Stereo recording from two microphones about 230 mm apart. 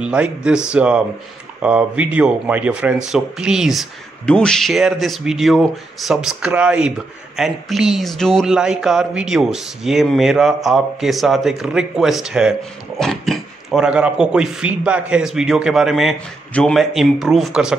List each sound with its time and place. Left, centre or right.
0.0 s speech: centre